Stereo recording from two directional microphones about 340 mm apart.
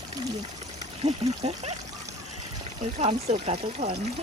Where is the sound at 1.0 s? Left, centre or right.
Centre.